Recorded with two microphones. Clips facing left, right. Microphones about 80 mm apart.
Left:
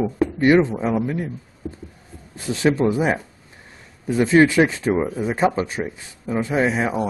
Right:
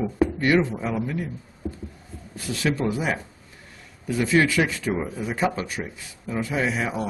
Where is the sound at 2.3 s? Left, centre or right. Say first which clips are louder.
Left 6 dB; left.